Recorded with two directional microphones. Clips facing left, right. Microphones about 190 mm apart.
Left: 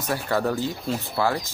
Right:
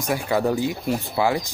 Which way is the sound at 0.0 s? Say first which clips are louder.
Right 3 dB; 15° right (ahead or behind).